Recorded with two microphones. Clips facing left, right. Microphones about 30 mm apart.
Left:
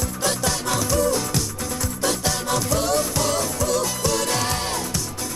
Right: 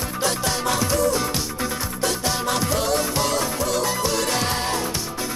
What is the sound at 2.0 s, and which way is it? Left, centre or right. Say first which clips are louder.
Music: even; right.